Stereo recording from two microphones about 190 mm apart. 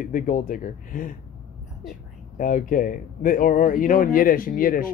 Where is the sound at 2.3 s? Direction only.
45° left (ahead or behind).